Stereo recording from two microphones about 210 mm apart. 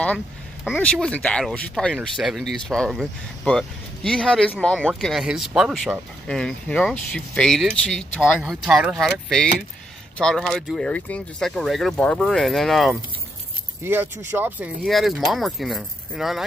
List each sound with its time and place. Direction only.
0.7 s speech: 5° left (ahead or behind)
13.8 s speech: 10° right (ahead or behind)